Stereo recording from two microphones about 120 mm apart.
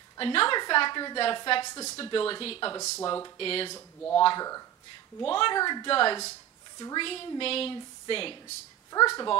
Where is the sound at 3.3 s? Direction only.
50° left (ahead or behind).